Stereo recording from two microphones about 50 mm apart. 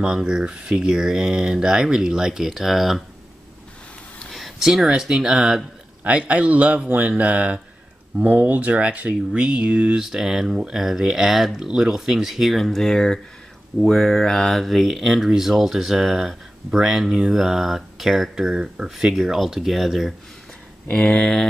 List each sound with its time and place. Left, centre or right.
0.0 s speech: centre
4.3 s a sound: centre
4.6 s speech: centre
6.0 s speech: right
8.2 s speech: right; by 10.0 s centre
10.0 s speech: centre
19.1 s speech: centre
20.8 s speech: left